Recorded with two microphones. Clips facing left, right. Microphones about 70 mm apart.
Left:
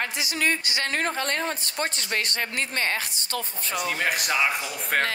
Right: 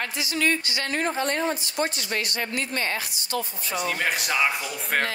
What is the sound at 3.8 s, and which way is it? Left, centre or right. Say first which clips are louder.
Speech: even; centre.